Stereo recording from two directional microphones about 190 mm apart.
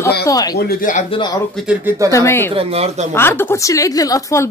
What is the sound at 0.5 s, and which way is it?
Speech, 45° left (ahead or behind).